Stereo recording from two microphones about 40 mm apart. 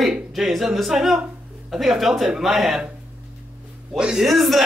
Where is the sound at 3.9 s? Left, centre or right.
Right.